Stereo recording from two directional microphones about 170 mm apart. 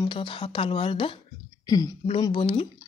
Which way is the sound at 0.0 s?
30° left (ahead or behind).